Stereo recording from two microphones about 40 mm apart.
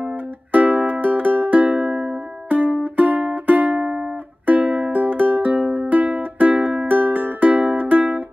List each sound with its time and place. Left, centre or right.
0.5 s music: right
1.8 s music: right
2.8 s music: right
4.6 s music: centre
4.9 s music: right